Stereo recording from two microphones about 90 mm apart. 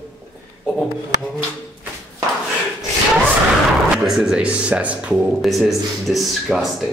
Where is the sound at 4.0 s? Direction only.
5° right (ahead or behind).